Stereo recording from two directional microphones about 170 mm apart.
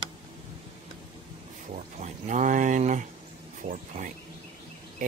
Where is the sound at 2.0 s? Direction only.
45° right (ahead or behind).